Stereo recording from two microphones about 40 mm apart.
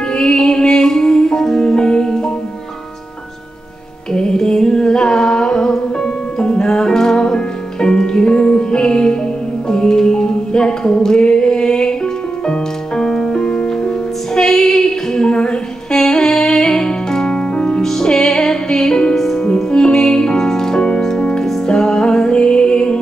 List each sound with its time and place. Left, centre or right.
0.1 s music: centre
4.1 s a sound: centre
9.7 s music: centre
14.5 s female singing: centre
15.1 s a sound: left
15.9 s music: centre